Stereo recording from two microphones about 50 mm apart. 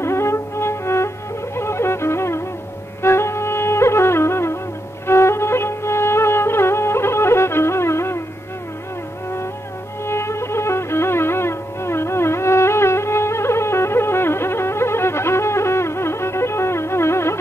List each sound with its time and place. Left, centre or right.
0.0 s music: left
10.0 s music: left